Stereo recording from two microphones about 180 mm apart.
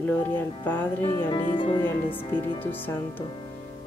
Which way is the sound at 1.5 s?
25° left (ahead or behind).